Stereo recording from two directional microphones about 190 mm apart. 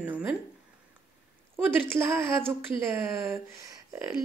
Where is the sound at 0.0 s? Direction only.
10° right (ahead or behind).